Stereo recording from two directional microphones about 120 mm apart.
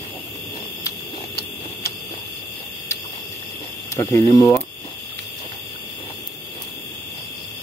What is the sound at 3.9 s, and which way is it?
Speech, 25° left (ahead or behind).